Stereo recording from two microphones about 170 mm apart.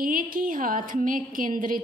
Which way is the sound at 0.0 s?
55° right (ahead or behind).